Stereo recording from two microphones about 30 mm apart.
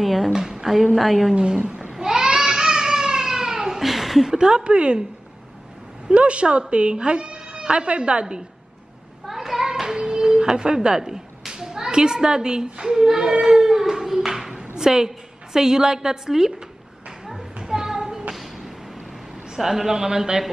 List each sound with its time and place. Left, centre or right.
0.0 s a woman's voice: centre
0.3 s a woman's voice: centre
2.0 s cat: centre
3.5 s laughter: centre
4.3 s speech: right
6.0 s a woman's voice: right
9.3 s a sound: centre
9.7 s a sound: centre
13.0 s speech: centre
17.6 s a sound: centre
19.5 s speech: centre